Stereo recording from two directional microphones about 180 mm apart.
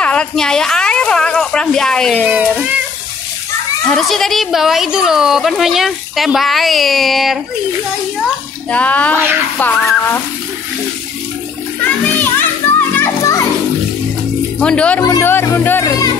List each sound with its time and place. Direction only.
0.0 s a sound: 5° left (ahead or behind)
2.3 s speech: centre (ahead or behind)
3.8 s speech: centre (ahead or behind)
8.6 s speech: 10° left (ahead or behind)
11.8 s children playing: 10° left (ahead or behind)
14.6 s speech: 5° left (ahead or behind)
15.0 s speech: 20° left (ahead or behind)